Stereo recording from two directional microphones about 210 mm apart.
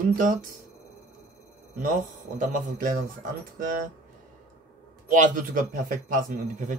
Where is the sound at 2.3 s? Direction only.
40° right (ahead or behind).